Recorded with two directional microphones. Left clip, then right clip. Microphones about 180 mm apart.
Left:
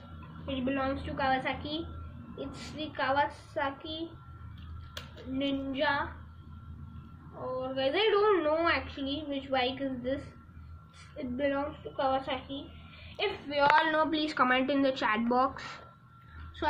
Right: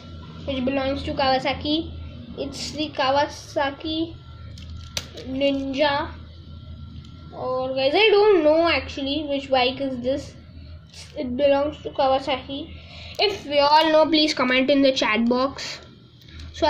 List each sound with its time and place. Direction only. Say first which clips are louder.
0.5 s a woman's voice: right 8 dB; 20° right (ahead or behind)
1.1 s a woman's voice: right 9 dB; 35° right (ahead or behind)
5.5 s a woman's voice: right 8 dB; 30° right (ahead or behind)
7.7 s a woman's voice: right 10 dB; 35° right (ahead or behind)
11.3 s a woman's voice: right 12 dB; 35° right (ahead or behind)
13.1 s a woman's voice: right 11 dB; 20° right (ahead or behind)